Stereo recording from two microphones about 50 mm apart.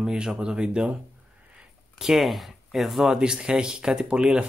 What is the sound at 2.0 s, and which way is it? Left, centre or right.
Speech, centre.